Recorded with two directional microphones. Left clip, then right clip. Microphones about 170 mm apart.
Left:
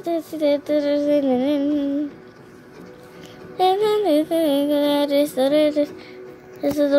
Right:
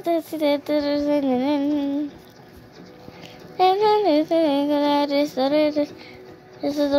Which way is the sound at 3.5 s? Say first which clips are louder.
Right 1 dB; 5° right (ahead or behind).